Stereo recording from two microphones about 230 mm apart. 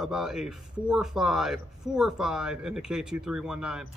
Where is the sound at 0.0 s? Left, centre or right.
Centre.